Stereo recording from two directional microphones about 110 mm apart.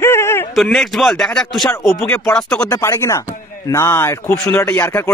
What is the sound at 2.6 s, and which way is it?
A man's voice, 30° left (ahead or behind).